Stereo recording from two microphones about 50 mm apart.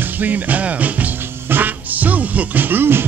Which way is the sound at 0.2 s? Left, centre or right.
Right.